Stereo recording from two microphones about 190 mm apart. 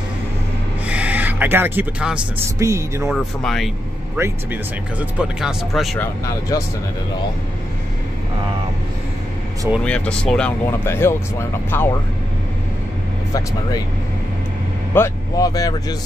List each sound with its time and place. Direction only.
0.8 s a sound: 5° right (ahead or behind)
2.6 s speech: 15° right (ahead or behind)
3.1 s speech: centre (ahead or behind)
4.2 s speech: 15° right (ahead or behind)
5.2 s speech: 5° right (ahead or behind)
5.9 s speech: 15° left (ahead or behind)
9.8 s speech: 5° left (ahead or behind)
13.3 s speech: 20° left (ahead or behind)
15.0 s speech: 20° left (ahead or behind)